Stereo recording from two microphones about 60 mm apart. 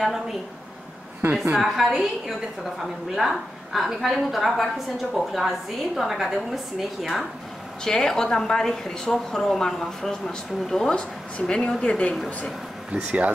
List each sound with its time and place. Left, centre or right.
0.0 s a woman's voice: centre
1.6 s a woman's voice: centre
7.8 s a woman's voice: centre
12.9 s speech: right